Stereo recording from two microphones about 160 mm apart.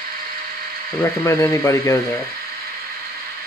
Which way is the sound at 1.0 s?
20° left (ahead or behind).